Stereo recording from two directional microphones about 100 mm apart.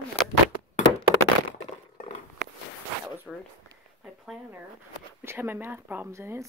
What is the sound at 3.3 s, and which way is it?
Speech, 10° right (ahead or behind).